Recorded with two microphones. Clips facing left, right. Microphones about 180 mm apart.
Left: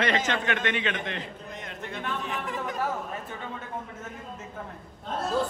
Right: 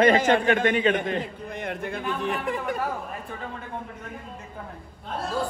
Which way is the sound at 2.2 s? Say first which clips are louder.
Right 5 dB; 60° right (ahead or behind).